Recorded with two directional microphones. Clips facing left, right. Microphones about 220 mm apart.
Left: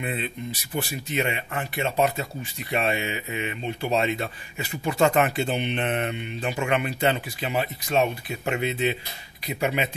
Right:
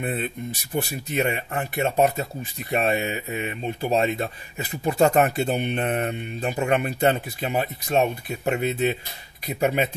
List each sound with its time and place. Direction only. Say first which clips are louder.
0.0 s speech: right 2 dB; 45° right (ahead or behind)